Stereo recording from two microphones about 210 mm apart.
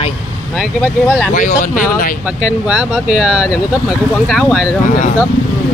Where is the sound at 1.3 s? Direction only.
35° left (ahead or behind).